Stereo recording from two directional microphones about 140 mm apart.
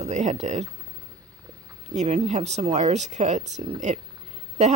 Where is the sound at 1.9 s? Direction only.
55° right (ahead or behind).